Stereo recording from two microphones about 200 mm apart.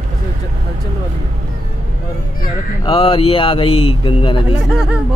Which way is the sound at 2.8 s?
25° left (ahead or behind).